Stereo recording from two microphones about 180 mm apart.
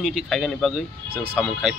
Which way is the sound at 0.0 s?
Centre (ahead or behind).